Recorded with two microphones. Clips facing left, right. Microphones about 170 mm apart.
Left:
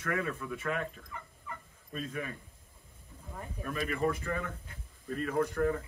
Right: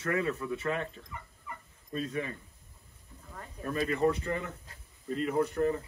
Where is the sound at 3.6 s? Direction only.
30° right (ahead or behind).